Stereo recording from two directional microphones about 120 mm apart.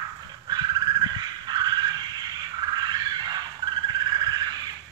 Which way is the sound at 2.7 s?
35° right (ahead or behind).